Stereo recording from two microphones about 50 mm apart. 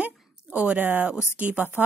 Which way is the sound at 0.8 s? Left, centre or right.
Right.